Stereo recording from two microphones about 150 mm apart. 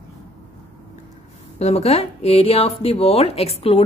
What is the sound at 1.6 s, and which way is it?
Speech, 45° left (ahead or behind).